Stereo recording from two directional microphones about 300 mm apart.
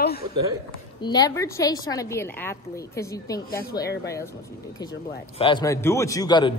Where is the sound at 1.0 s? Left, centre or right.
Centre.